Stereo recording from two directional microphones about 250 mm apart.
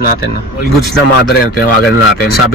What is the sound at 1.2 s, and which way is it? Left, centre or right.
Speech, left.